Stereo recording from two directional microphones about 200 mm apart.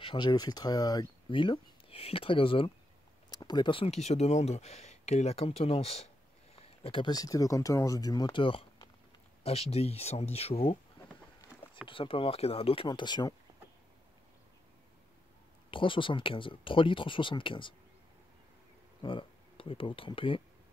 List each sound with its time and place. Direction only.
0.0 s speech: 25° left (ahead or behind)
11.9 s speech: 25° left (ahead or behind)
15.7 s speech: 25° left (ahead or behind)
19.0 s speech: 25° left (ahead or behind)